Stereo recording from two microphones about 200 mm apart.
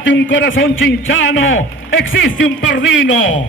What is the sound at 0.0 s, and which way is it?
A man's voice, 70° left (ahead or behind).